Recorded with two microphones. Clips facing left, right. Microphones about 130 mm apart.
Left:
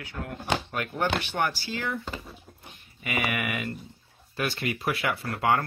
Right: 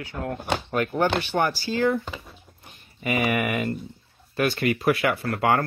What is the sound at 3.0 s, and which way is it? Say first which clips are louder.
Speech: right 6 dB; 35° right (ahead or behind).